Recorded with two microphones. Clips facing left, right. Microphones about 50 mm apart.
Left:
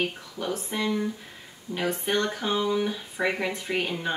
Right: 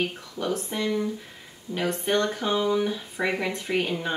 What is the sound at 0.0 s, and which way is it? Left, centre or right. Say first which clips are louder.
Speech: right 1 dB; centre.